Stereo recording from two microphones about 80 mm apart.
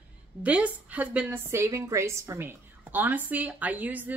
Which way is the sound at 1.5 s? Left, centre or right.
Right.